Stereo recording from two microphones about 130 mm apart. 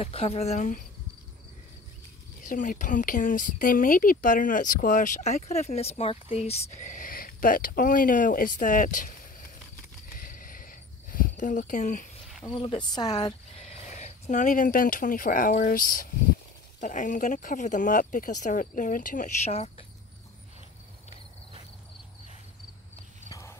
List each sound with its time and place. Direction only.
0.0 s speech: 50° left (ahead or behind)
2.4 s a woman's voice: 90° left
10.1 s a sound: 90° left
12.5 s speech: 40° left (ahead or behind)
13.6 s speech: 60° left (ahead or behind); by 16.1 s 90° left
16.8 s speech: 75° left (ahead or behind); by 19.7 s 55° left (ahead or behind)